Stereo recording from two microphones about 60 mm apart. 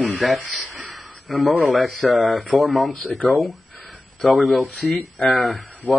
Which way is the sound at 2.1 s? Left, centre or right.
Centre.